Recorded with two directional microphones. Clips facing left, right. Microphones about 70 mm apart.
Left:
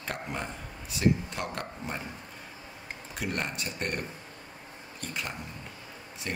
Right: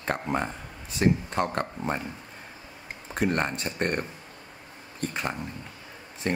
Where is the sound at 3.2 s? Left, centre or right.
Right.